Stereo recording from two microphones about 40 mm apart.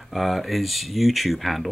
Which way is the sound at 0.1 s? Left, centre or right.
Centre.